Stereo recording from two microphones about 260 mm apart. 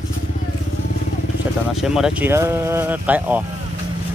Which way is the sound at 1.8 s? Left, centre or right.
Centre.